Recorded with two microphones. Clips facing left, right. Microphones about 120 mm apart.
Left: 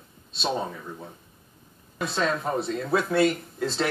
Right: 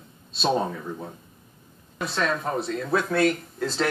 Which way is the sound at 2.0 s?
25° left (ahead or behind).